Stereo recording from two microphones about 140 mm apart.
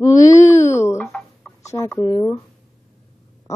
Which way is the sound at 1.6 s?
20° left (ahead or behind).